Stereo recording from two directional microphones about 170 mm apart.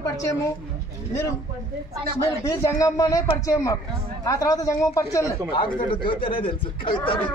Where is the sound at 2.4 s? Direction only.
20° left (ahead or behind).